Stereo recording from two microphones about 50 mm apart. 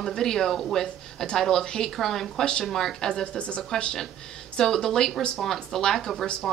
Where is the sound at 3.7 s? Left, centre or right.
Centre.